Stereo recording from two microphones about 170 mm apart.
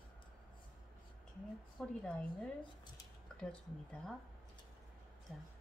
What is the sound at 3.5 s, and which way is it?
Speech, 5° left (ahead or behind).